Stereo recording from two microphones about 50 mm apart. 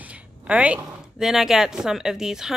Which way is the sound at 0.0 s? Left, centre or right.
Right.